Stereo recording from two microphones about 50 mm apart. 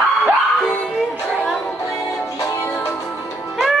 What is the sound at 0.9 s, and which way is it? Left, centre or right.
Music, centre.